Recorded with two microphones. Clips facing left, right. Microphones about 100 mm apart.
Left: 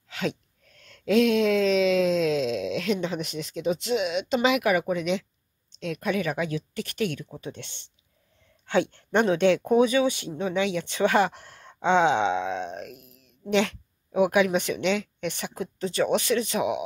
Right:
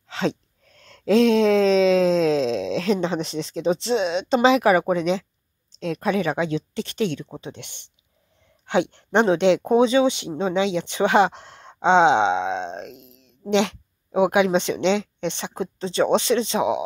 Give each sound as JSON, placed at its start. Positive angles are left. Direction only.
{"t": 0.1, "sound": "speech", "side_deg": -30}